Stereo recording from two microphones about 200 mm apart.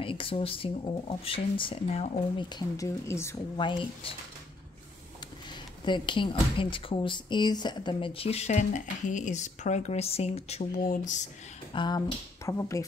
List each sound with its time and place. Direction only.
0.0 s speech: 25° left (ahead or behind)
3.5 s speech: 25° left (ahead or behind)
5.9 s speech: 25° left (ahead or behind)
11.7 s speech: 25° left (ahead or behind)